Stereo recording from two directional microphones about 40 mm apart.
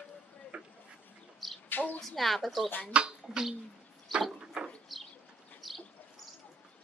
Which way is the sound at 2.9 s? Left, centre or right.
Right.